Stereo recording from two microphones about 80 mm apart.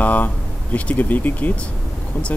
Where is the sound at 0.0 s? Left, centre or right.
Left.